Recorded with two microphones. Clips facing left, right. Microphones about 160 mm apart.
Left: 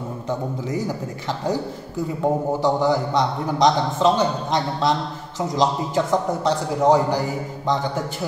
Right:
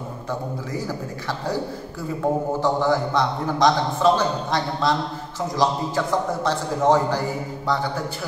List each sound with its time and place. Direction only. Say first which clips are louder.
0.7 s a man's voice: left 5 dB; 20° left (ahead or behind)
2.6 s a man's voice: left 1 dB; 15° left (ahead or behind)